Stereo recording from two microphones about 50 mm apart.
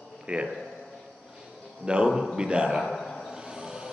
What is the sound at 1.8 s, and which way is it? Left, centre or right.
Speech, centre.